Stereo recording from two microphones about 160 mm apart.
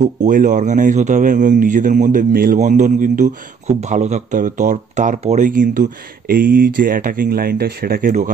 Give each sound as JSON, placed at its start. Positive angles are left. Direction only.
{"t": 0.0, "sound": "a man's voice", "side_deg": -50}
{"t": 2.6, "sound": "a man's voice", "side_deg": -50}